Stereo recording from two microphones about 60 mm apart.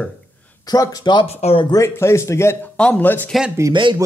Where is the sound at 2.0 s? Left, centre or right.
Left.